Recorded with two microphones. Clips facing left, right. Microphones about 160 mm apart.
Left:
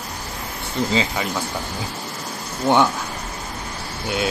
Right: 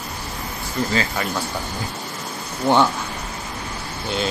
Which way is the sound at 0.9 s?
20° left (ahead or behind).